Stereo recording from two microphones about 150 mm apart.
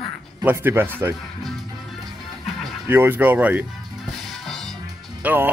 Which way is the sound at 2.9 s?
15° right (ahead or behind).